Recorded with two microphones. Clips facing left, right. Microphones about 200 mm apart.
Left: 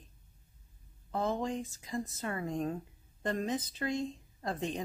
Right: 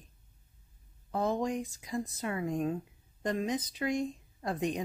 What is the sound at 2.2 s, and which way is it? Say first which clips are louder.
Speech: right 3 dB; 15° right (ahead or behind).